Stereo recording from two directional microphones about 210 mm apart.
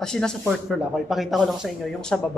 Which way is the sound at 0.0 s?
5° left (ahead or behind).